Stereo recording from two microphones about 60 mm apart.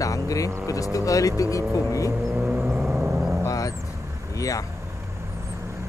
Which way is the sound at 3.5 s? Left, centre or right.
Left.